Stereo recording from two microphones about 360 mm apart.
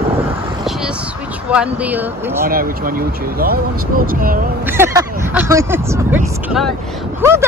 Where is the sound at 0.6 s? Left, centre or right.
Centre.